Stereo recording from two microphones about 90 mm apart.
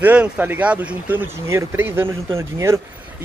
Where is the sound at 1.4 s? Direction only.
30° right (ahead or behind).